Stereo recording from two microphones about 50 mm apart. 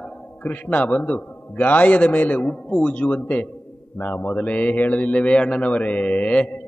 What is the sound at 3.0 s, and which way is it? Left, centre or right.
A man's voice, left.